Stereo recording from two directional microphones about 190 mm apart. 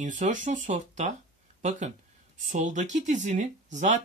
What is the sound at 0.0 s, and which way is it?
Speech, 40° right (ahead or behind).